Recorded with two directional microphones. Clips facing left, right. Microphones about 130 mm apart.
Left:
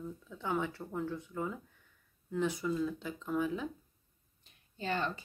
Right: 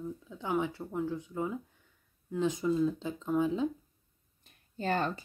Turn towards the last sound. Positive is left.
turn(degrees=-45)  # may be behind; listen again after turning